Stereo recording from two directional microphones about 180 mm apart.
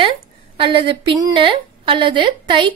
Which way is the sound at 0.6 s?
30° right (ahead or behind).